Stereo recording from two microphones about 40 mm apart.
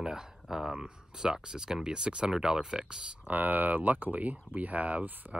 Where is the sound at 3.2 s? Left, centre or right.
Right.